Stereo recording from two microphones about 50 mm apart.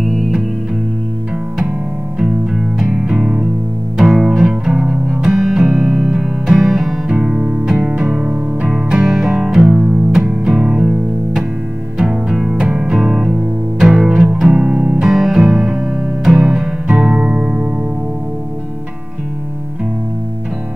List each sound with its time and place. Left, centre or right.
0.0 s music: centre
2.1 s music: centre
7.1 s music: centre
15.0 s music: centre